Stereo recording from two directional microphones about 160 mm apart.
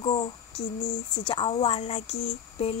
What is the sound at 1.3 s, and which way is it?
Speech, 35° left (ahead or behind).